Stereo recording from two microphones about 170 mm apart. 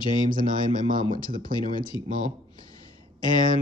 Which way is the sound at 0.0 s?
55° right (ahead or behind).